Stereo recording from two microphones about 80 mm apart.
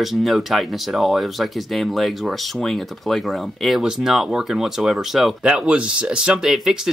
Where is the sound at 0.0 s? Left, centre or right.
Centre.